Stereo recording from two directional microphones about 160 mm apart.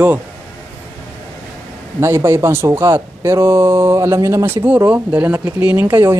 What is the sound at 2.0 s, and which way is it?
Speech, 15° right (ahead or behind).